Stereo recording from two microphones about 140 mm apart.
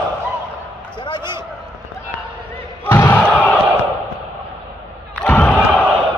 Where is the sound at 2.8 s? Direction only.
15° left (ahead or behind).